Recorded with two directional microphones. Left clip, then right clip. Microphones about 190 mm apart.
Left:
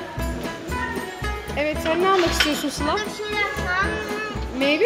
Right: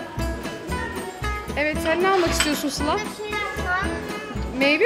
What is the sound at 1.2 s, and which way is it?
Speech, centre (ahead or behind).